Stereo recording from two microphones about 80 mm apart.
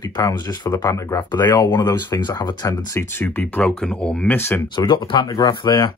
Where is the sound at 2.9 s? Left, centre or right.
Left.